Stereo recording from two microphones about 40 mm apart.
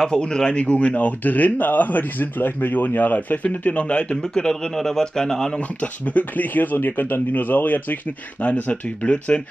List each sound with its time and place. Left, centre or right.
0.0 s speech: left
3.7 s speech: left
4.2 s a man's voice: centre
5.8 s speech: left